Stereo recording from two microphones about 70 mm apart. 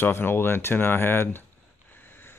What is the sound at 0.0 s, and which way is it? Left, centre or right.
Speech, left.